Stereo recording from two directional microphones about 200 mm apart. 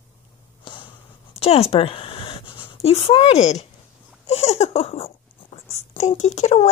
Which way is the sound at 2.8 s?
30° left (ahead or behind).